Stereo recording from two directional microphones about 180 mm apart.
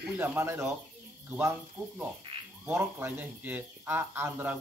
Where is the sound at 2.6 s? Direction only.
10° right (ahead or behind).